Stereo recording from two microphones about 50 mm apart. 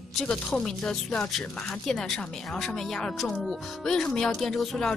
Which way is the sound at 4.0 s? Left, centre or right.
Centre.